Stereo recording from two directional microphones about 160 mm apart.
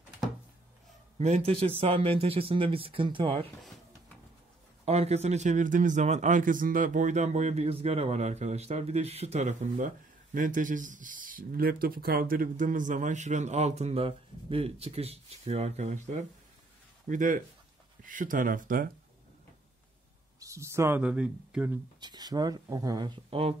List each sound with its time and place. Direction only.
1.1 s speech: 45° right (ahead or behind)
4.8 s a man's voice: 40° right (ahead or behind); by 18.9 s 60° right (ahead or behind)
20.3 s speech: 20° right (ahead or behind)
22.0 s speech: 25° right (ahead or behind)